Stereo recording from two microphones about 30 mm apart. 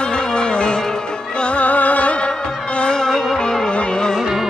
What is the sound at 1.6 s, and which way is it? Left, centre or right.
Music, left.